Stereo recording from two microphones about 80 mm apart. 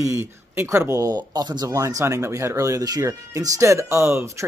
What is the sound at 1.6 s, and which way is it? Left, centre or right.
Speech, right.